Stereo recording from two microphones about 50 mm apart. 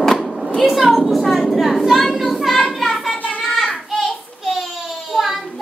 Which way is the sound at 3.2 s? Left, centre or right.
Left.